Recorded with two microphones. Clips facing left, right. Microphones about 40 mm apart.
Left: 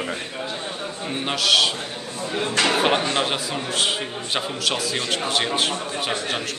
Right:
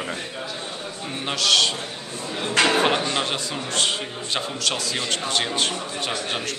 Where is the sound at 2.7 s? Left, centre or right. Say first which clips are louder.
Left 1 dB; centre.